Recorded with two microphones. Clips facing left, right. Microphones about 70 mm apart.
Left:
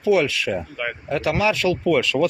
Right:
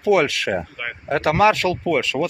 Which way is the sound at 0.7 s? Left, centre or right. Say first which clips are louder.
Left 3 dB; centre.